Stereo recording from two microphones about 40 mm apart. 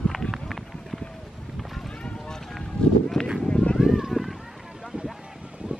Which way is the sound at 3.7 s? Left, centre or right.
Centre.